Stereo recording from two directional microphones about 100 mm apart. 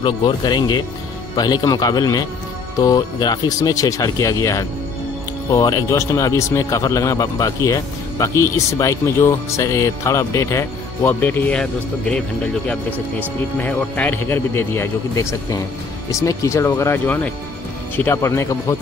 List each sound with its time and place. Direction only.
0.0 s speech: 50° left (ahead or behind); by 12.2 s 10° left (ahead or behind)
13.6 s speech: 15° left (ahead or behind)
18.1 s speech: 30° left (ahead or behind)